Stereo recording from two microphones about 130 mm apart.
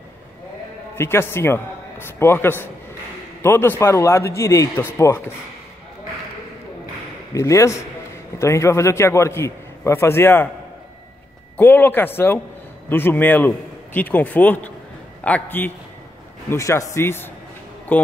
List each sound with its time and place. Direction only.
0.9 s a man's voice: 20° left (ahead or behind)
7.3 s a man's voice: 25° left (ahead or behind)
11.5 s a man's voice: 15° left (ahead or behind)